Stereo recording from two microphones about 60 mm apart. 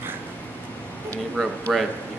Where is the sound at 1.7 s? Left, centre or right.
Centre.